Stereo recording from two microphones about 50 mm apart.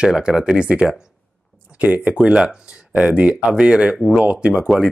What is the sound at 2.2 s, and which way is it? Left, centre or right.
Speech, centre.